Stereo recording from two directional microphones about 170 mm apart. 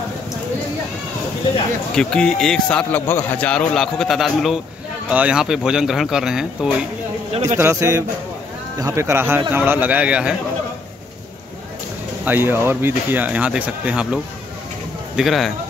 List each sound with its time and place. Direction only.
2.0 s a man's voice: 5° left (ahead or behind)
7.4 s speech: 15° right (ahead or behind)
12.3 s a man's voice: 15° right (ahead or behind)